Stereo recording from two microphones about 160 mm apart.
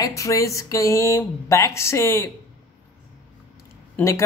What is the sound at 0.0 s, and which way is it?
Speech, 20° left (ahead or behind).